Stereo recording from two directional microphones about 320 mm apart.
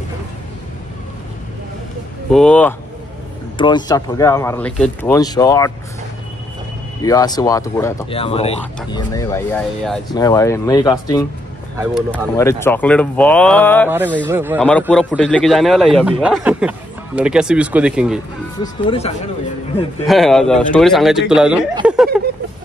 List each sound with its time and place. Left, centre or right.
2.3 s a man's voice: centre
3.5 s speech: centre
7.0 s speech: centre
11.8 s a man's voice: centre
12.4 s a man's voice: centre
13.8 s a man's voice: centre
18.6 s speech: centre
20.1 s a man's voice: centre
21.8 s a sound: centre